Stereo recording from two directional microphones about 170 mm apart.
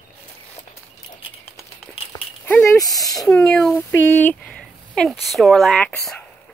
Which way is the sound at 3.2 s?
5° left (ahead or behind).